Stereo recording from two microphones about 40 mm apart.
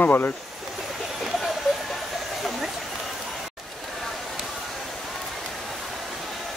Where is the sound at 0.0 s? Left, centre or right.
Left.